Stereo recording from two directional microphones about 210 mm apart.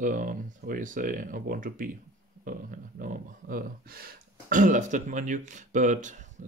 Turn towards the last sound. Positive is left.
turn(degrees=-35)  # may be behind; listen again after turning